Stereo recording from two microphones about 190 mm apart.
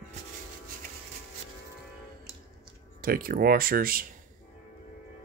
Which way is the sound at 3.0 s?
50° right (ahead or behind).